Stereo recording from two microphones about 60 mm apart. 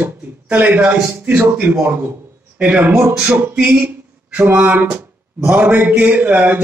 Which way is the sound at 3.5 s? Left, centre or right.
Centre.